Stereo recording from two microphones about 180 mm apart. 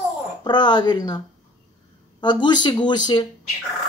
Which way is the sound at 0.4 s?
25° left (ahead or behind).